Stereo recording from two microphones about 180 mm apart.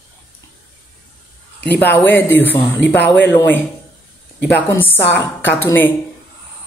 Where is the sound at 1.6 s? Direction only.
10° left (ahead or behind).